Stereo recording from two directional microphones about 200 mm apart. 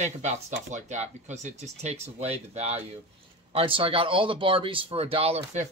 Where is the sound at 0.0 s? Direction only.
35° right (ahead or behind).